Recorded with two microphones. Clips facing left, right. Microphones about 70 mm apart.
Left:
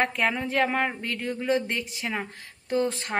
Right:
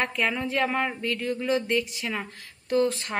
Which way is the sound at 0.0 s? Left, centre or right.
Left.